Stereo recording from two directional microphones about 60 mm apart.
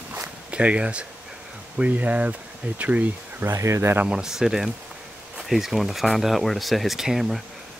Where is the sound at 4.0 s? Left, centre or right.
Centre.